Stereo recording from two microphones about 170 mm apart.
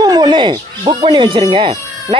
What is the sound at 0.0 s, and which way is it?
Speech, 25° right (ahead or behind).